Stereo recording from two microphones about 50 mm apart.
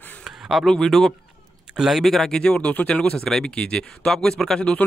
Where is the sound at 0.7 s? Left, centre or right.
Centre.